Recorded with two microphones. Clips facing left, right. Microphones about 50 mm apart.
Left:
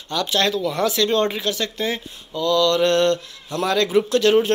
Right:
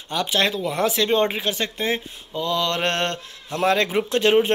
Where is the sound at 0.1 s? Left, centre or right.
Right.